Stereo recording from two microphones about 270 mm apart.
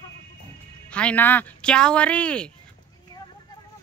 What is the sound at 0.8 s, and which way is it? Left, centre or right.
A woman's voice, centre.